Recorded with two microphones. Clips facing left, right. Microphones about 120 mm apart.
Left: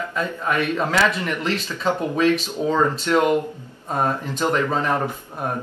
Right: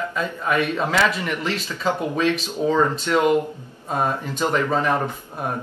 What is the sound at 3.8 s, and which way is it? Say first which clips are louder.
Speech: even; 5° right (ahead or behind).